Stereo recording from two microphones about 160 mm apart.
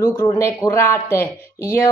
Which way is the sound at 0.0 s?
20° left (ahead or behind).